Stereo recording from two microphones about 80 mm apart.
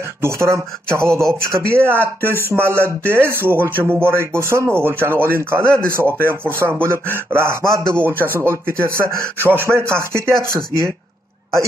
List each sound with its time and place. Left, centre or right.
0.2 s speech: right